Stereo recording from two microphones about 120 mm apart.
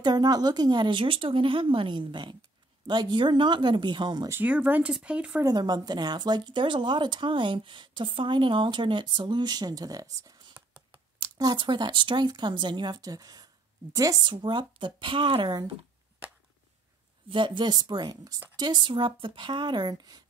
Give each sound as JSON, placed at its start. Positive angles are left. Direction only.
{"t": 0.0, "sound": "speech", "side_deg": -35}
{"t": 4.3, "sound": "speech", "side_deg": -15}
{"t": 5.4, "sound": "speech", "side_deg": -35}
{"t": 17.3, "sound": "speech", "side_deg": -40}